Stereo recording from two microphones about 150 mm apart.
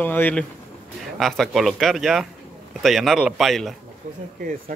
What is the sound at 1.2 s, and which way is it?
Speech, centre (ahead or behind).